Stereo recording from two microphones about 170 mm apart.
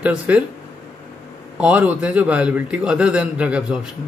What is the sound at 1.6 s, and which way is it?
A man's voice, 10° right (ahead or behind).